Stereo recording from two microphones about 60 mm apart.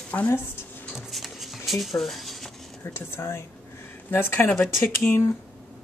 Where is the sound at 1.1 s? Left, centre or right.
Centre.